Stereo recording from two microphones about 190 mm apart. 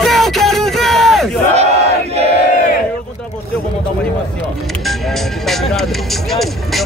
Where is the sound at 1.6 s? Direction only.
35° right (ahead or behind).